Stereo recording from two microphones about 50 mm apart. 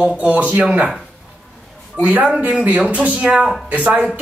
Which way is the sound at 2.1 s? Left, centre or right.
Right.